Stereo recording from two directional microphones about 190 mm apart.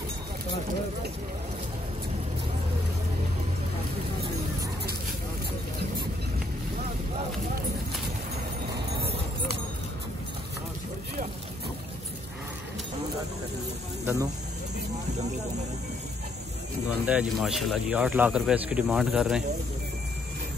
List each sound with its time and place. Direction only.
14.0 s speech: 15° right (ahead or behind)
17.0 s speech: 5° right (ahead or behind)